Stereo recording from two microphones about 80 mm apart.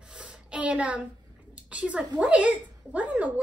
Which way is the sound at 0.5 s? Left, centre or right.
Centre.